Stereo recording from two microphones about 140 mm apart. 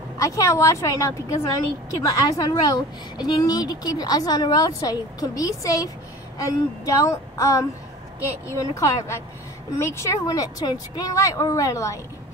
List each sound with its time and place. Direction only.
0.2 s a woman's voice: 25° left (ahead or behind)